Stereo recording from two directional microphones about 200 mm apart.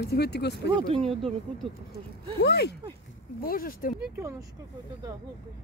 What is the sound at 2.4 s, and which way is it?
Speech, 55° left (ahead or behind).